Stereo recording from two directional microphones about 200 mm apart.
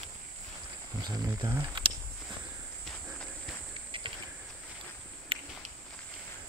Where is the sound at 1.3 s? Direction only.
15° right (ahead or behind).